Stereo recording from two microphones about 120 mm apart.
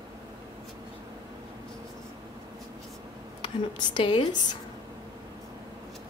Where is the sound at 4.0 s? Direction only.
45° left (ahead or behind).